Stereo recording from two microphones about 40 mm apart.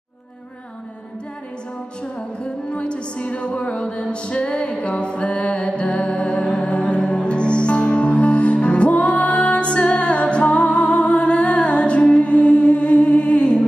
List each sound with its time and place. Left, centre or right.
2.8 s music: left